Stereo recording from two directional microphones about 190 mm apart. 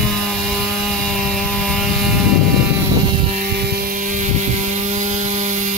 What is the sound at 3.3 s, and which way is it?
Hum, 50° right (ahead or behind).